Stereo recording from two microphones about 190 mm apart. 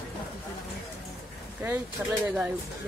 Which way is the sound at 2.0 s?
10° right (ahead or behind).